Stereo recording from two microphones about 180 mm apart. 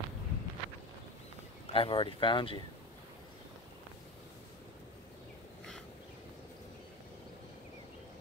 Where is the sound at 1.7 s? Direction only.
30° left (ahead or behind).